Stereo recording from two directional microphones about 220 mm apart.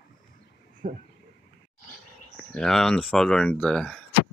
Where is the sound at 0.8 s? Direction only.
35° right (ahead or behind).